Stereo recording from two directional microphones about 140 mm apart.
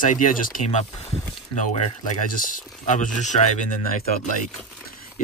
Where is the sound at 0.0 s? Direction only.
70° left (ahead or behind).